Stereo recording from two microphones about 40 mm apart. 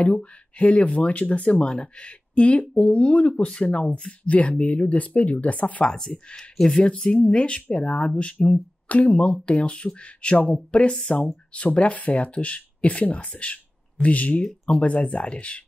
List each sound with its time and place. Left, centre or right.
0.0 s speech: left
5.9 s speech: centre
6.1 s speech: left
6.5 s speech: centre
7.1 s speech: left